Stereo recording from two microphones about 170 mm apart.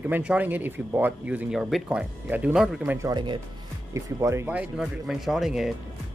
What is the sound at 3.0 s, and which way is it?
Speech, 25° right (ahead or behind).